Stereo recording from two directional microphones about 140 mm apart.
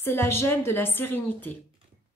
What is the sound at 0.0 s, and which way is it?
A woman's voice, 15° left (ahead or behind).